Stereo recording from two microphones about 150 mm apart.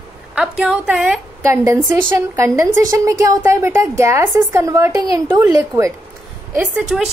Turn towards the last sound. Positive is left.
turn(degrees=-5)  # may be behind; listen again after turning